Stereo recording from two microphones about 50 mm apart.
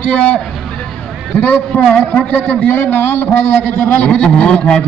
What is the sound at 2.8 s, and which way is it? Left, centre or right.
A man's voice, left.